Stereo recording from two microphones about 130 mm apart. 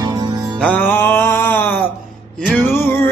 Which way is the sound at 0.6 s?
10° left (ahead or behind).